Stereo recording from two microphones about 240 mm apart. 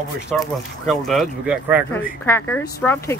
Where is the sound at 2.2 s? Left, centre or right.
Centre.